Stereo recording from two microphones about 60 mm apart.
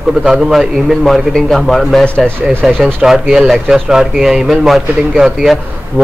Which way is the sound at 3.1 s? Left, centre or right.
Centre.